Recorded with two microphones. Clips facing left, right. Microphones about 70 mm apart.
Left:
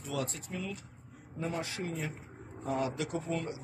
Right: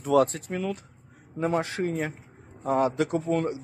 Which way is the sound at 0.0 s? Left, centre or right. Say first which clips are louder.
Right 15 dB; right.